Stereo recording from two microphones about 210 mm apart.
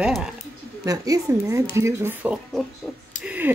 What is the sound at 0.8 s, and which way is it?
Speech, 15° right (ahead or behind).